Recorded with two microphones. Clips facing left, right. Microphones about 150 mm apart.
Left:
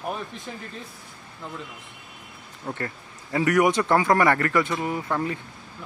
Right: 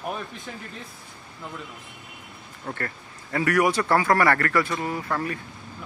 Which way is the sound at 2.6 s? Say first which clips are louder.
Left 1 dB; 15° left (ahead or behind).